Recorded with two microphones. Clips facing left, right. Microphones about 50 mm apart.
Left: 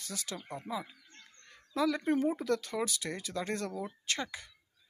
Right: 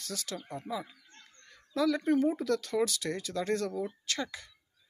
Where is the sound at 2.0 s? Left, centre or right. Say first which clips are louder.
Right 2 dB; left.